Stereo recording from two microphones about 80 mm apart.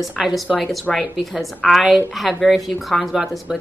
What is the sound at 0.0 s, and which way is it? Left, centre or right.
Speech, centre.